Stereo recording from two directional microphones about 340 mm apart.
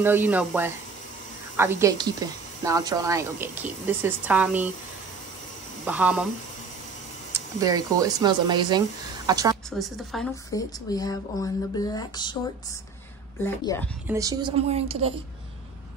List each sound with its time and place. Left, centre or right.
0.0 s speech: centre
5.9 s speech: centre
7.6 s speech: centre
9.7 s a woman's voice: centre
13.4 s speech: centre
14.0 s speech: centre